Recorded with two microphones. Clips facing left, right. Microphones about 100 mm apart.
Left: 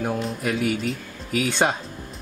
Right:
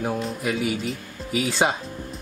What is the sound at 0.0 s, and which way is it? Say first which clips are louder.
Speech: even; centre (ahead or behind).